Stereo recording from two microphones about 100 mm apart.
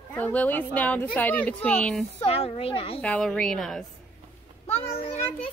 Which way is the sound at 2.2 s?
85° left.